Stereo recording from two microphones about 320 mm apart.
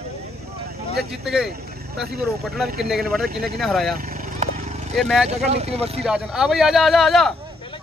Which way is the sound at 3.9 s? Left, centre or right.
Right.